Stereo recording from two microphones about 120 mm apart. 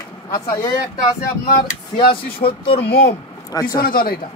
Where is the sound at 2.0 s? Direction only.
45° left (ahead or behind).